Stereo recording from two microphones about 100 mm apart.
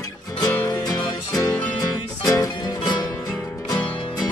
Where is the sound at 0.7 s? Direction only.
40° left (ahead or behind).